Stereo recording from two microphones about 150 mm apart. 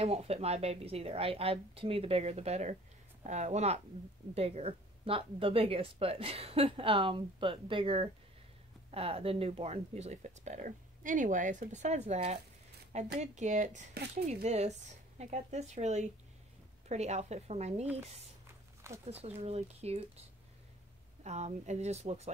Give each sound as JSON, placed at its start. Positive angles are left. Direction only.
{"t": 0.0, "sound": "a woman's voice", "side_deg": -45}
{"t": 19.2, "sound": "speech", "side_deg": -45}
{"t": 21.2, "sound": "speech", "side_deg": -50}